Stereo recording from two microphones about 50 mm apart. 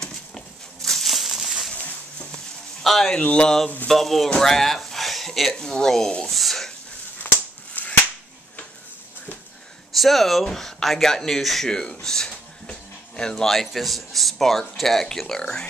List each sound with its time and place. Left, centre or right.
0.8 s crumpling: centre
2.8 s speech: centre
3.1 s speech: left
3.9 s speech: centre
4.4 s a sound: centre
5.6 s speech: centre
6.3 s a sound: centre
7.3 s a sound: left
9.9 s speech: centre